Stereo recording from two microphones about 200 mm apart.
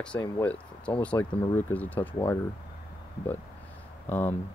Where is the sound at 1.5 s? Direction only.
10° left (ahead or behind).